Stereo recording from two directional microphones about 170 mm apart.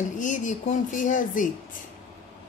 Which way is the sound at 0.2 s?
50° left (ahead or behind).